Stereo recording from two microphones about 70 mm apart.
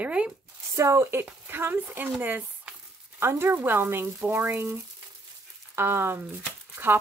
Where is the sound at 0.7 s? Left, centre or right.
Right.